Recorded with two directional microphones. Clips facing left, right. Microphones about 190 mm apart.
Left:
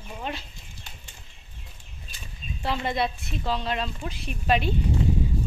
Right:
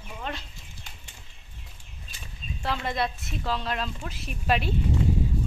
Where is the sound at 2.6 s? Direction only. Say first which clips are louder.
Left 2 dB; centre (ahead or behind).